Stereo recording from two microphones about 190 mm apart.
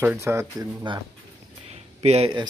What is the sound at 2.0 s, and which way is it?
Speech, 30° right (ahead or behind).